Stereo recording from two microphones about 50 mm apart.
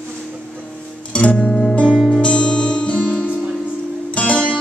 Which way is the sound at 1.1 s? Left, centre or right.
Left.